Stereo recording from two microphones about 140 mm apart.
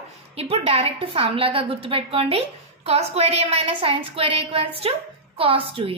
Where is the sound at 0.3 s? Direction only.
45° right (ahead or behind).